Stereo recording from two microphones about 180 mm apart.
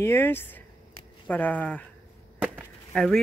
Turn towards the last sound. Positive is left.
turn(degrees=0)  # may be behind; listen again after turning